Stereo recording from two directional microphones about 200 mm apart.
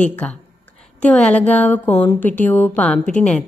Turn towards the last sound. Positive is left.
turn(degrees=5)  # may be behind; listen again after turning